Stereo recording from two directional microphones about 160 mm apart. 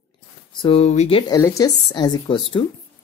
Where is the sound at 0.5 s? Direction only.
35° left (ahead or behind).